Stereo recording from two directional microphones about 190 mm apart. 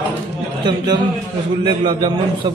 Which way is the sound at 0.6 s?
20° right (ahead or behind).